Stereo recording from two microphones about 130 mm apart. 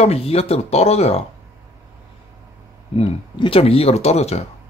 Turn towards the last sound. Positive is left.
turn(degrees=55)  # may be behind; listen again after turning